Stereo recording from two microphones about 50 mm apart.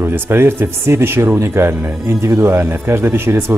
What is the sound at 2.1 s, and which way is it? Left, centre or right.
Speech, right.